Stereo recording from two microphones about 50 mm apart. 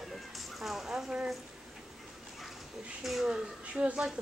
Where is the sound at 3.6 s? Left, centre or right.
Right.